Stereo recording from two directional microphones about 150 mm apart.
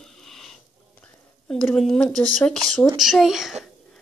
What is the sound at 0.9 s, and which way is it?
Speech, 10° left (ahead or behind).